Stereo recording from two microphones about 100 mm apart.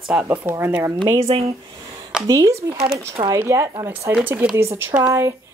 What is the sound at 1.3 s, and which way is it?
Speech, 55° right (ahead or behind).